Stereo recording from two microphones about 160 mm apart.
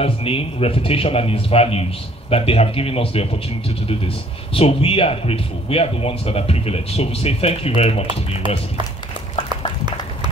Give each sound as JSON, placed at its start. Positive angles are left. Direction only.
{"t": 0.0, "sound": "speech", "side_deg": 35}
{"t": 4.6, "sound": "speech", "side_deg": 35}